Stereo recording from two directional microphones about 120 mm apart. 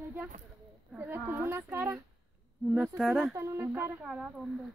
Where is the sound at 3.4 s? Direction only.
20° right (ahead or behind).